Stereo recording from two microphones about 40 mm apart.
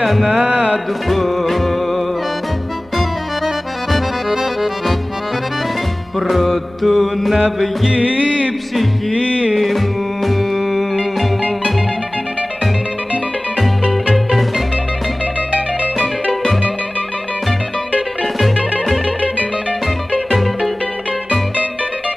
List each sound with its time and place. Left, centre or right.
0.0 s a sound: centre
0.5 s music: right
1.0 s music: centre
6.1 s music: centre
7.9 s music: right
9.5 s music: centre
18.2 s music: centre